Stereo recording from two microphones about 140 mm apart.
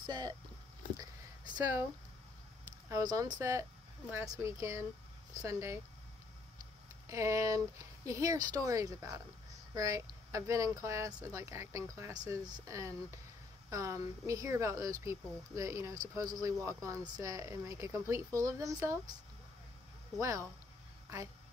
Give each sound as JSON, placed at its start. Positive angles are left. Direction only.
{"t": 0.0, "sound": "speech", "side_deg": -30}
{"t": 2.9, "sound": "speech", "side_deg": -25}
{"t": 7.1, "sound": "speech", "side_deg": -20}
{"t": 20.2, "sound": "speech", "side_deg": -20}